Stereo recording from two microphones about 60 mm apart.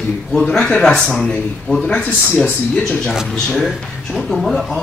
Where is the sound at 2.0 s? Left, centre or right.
Left.